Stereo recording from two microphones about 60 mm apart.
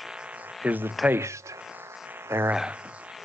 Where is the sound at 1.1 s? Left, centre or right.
Right.